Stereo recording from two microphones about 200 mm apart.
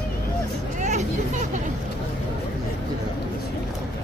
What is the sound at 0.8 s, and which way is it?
Vehicle, 35° right (ahead or behind).